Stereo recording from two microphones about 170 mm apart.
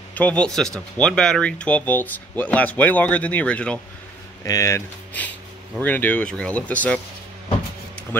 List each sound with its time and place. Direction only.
0.1 s speech: 10° left (ahead or behind)
4.5 s speech: 15° left (ahead or behind)